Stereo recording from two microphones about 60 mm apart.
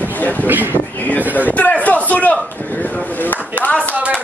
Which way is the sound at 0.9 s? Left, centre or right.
Left.